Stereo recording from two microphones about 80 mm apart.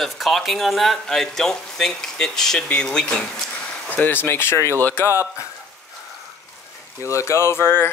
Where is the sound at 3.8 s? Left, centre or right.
Left.